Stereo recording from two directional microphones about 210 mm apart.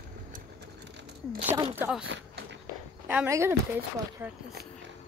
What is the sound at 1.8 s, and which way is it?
Speech, 5° right (ahead or behind).